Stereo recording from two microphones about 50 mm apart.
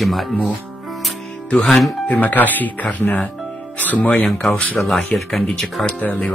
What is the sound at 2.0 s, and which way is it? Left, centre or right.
Speech, left.